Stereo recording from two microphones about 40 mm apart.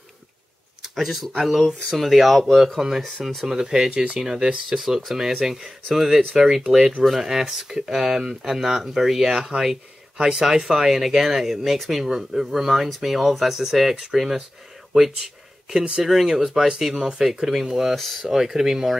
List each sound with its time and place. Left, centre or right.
0.9 s speech: centre
3.4 s speech: centre
3.9 s speech: right
4.2 s speech: centre
17.9 s speech: centre
18.2 s speech: centre